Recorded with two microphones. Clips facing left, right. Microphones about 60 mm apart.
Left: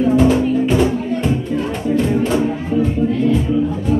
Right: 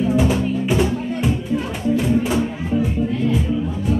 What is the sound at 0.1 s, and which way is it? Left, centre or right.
Music, centre.